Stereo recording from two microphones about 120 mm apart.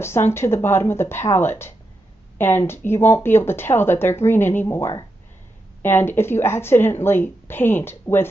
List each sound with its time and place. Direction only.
0.0 s speech: 20° left (ahead or behind)